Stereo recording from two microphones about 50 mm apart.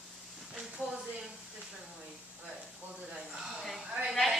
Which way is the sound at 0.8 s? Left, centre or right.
Left.